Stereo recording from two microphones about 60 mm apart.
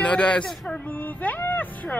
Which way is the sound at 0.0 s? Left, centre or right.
Left.